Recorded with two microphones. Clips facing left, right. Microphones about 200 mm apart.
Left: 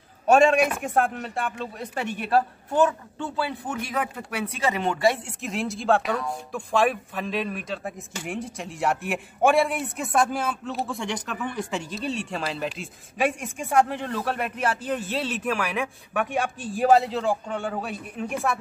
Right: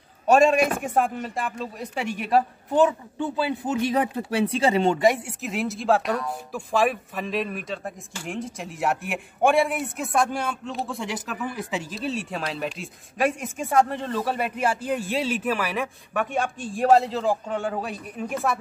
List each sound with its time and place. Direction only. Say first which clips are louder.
0.3 s a man's voice: even; centre (ahead or behind); by 5.2 s 20° right (ahead or behind)
5.2 s a man's voice: right 1 dB; centre (ahead or behind)